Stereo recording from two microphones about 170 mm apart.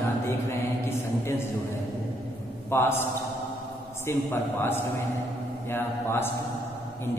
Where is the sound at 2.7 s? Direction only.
15° left (ahead or behind).